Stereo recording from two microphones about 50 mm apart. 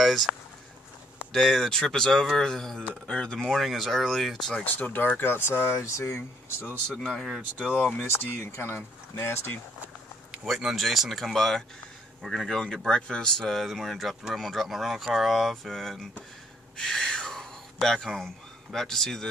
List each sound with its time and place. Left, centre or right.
0.0 s speech: centre
4.6 s speech: left
6.9 s speech: centre
8.0 s speech: left
10.3 s speech: centre
13.5 s speech: centre
16.7 s a sound: centre
17.8 s speech: centre